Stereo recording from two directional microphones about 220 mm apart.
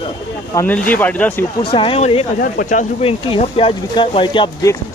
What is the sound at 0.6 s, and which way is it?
Speech, 10° left (ahead or behind).